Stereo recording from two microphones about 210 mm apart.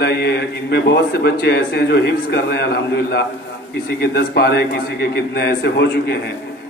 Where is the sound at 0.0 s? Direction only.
50° left (ahead or behind).